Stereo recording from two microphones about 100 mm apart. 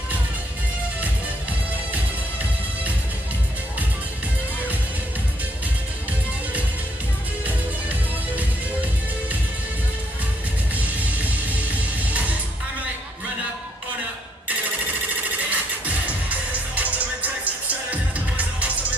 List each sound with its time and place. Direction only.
10.8 s music: 15° right (ahead or behind)
15.3 s music: 15° right (ahead or behind)